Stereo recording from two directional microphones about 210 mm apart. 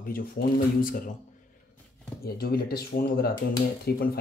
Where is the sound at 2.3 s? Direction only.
45° left (ahead or behind).